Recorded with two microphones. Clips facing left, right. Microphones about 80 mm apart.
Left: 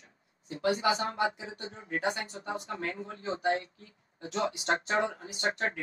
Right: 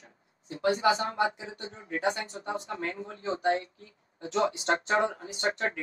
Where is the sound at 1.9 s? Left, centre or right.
Right.